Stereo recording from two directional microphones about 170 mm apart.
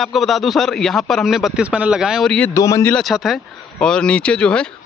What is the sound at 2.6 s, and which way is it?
Speech, 20° left (ahead or behind).